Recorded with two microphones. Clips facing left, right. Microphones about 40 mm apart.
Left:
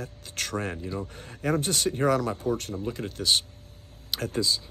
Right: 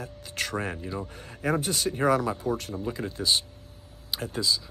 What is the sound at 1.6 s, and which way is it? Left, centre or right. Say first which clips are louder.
Speech: left 1 dB; left.